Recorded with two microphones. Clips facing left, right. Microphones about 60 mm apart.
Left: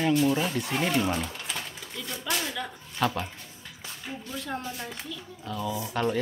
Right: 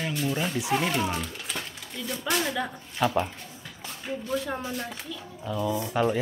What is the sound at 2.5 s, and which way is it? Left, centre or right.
Speech, centre.